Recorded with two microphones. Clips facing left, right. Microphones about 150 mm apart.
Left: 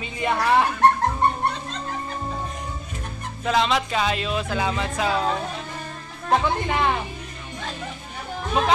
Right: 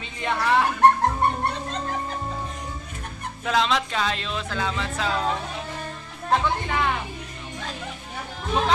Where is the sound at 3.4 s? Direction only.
5° left (ahead or behind).